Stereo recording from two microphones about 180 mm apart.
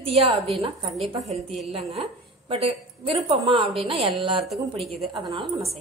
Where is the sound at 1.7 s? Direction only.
30° right (ahead or behind).